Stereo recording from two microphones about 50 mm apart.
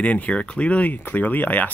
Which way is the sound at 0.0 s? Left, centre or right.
Left.